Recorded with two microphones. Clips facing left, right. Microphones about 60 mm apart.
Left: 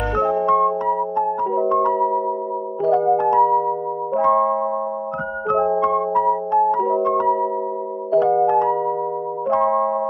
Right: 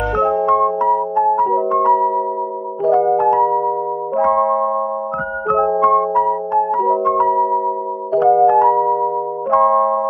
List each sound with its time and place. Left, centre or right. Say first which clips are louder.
0.1 s music: right 2 dB; right
5.8 s music: right 5 dB; right